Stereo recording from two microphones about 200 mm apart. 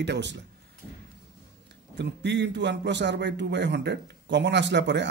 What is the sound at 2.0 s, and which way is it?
A man's voice, 60° right (ahead or behind).